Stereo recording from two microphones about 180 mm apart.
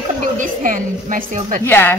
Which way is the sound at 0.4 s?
45° right (ahead or behind).